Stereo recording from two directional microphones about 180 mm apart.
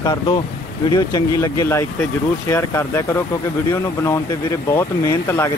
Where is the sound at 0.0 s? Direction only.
25° left (ahead or behind).